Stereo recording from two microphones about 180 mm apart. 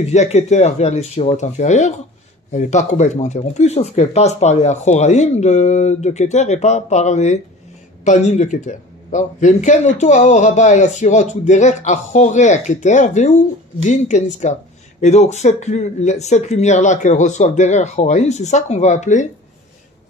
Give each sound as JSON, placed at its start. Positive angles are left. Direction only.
{"t": 0.0, "sound": "speech", "side_deg": 40}